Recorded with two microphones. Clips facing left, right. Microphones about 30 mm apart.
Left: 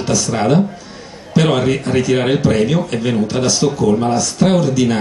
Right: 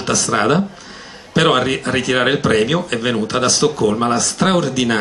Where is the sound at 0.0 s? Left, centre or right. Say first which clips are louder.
Left 1 dB; right.